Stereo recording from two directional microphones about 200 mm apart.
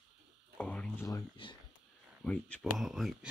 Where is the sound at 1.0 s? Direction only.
20° left (ahead or behind).